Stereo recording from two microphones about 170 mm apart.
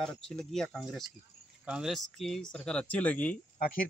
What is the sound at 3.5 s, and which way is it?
Speech, 55° left (ahead or behind).